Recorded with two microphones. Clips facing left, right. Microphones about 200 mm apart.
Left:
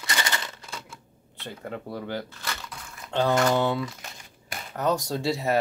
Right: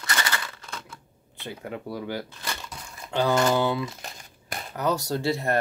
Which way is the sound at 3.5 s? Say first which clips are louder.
Even; 5° right (ahead or behind).